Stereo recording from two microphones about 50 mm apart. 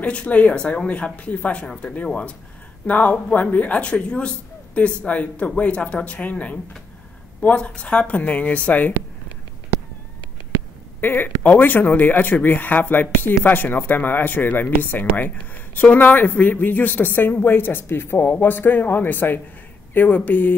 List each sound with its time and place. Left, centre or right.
0.0 s speech: left
2.9 s speech: left
11.0 s speech: left